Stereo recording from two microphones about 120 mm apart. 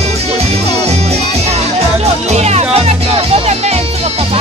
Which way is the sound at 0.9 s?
60° right (ahead or behind).